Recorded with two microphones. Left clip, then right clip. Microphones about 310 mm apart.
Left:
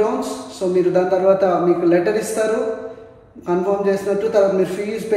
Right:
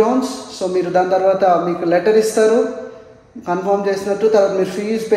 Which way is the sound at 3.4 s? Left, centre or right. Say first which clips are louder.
Right 1 dB; right.